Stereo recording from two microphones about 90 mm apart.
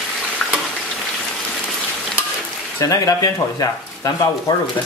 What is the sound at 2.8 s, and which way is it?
Speech, 40° left (ahead or behind).